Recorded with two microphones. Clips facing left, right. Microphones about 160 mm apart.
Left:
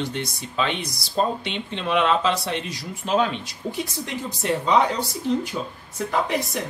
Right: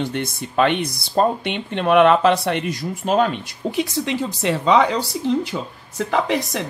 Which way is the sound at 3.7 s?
90° right.